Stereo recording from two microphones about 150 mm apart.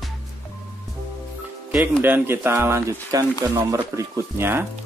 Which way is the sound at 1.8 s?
15° right (ahead or behind).